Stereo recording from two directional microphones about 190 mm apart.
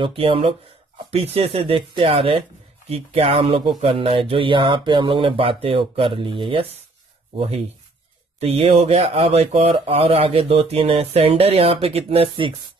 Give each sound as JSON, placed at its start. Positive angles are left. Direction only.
{"t": 0.0, "sound": "speech", "side_deg": -30}